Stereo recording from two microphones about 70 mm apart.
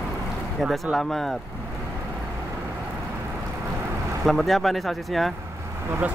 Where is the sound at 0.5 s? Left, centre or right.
Centre.